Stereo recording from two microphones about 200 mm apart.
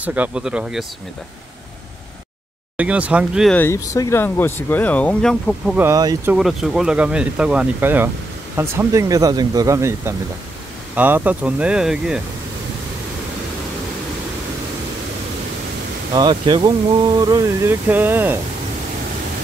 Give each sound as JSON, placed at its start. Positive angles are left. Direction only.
{"t": 0.0, "sound": "speech", "side_deg": -5}
{"t": 2.8, "sound": "speech", "side_deg": -5}
{"t": 3.5, "sound": "speech", "side_deg": 15}
{"t": 5.8, "sound": "speech", "side_deg": -15}
{"t": 6.3, "sound": "speech", "side_deg": 0}
{"t": 16.1, "sound": "speech", "side_deg": -20}